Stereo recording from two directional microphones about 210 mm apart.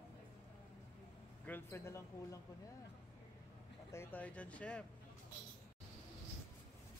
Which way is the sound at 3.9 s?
10° left (ahead or behind).